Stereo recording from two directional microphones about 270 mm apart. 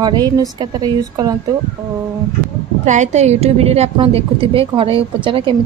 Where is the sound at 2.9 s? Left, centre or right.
Right.